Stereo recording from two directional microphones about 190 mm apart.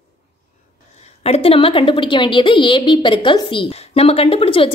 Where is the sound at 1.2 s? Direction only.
30° left (ahead or behind).